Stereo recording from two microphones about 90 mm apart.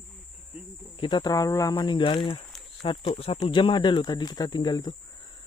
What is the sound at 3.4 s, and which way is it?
Speech, 70° left (ahead or behind).